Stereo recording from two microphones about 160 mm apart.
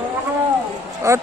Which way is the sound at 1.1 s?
20° right (ahead or behind).